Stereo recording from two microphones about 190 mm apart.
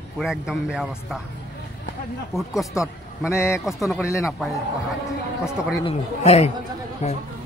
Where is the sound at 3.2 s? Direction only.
15° left (ahead or behind).